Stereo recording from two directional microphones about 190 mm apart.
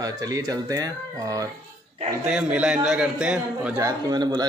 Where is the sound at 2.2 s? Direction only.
5° right (ahead or behind).